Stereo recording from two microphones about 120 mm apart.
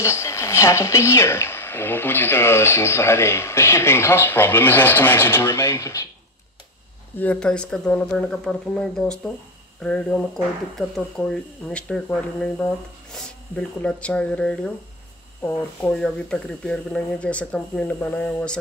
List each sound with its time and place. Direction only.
0.0 s speech: 20° left (ahead or behind)
7.2 s speech: 10° left (ahead or behind)